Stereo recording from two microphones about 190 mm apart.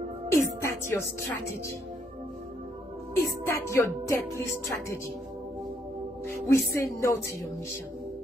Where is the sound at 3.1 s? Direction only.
15° left (ahead or behind).